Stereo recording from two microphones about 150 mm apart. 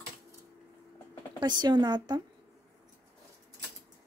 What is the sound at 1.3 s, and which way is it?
Speech, 30° right (ahead or behind).